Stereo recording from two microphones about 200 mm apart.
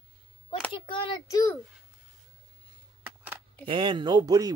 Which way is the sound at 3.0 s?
10° right (ahead or behind).